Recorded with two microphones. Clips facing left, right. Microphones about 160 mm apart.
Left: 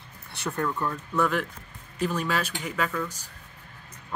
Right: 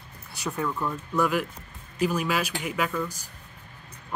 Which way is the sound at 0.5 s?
5° right (ahead or behind).